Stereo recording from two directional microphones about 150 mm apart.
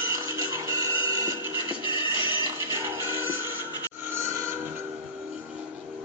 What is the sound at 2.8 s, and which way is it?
Music, 15° right (ahead or behind).